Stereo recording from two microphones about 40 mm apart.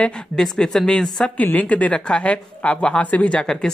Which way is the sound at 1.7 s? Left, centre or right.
Left.